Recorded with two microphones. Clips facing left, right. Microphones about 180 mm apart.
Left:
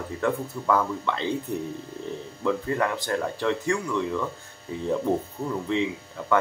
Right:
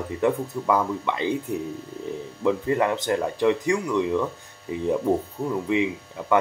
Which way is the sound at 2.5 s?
20° right (ahead or behind).